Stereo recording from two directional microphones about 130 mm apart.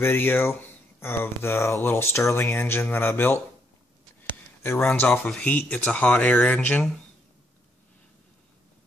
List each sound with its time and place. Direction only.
0.0 s speech: 15° left (ahead or behind)
4.6 s speech: 15° left (ahead or behind)